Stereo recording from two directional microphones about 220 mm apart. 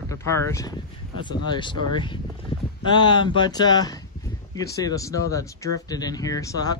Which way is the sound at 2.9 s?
20° left (ahead or behind).